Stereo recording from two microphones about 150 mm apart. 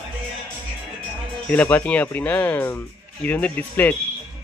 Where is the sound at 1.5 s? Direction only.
10° left (ahead or behind).